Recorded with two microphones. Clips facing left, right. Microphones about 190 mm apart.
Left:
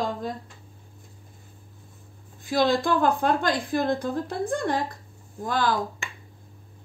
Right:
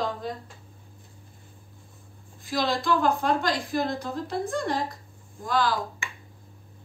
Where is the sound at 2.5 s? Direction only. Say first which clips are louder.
Left 3 dB; 55° left (ahead or behind).